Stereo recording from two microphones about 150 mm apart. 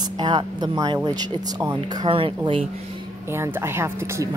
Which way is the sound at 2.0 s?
35° right (ahead or behind).